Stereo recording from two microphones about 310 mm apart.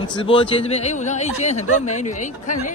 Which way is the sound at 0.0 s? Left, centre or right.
Centre.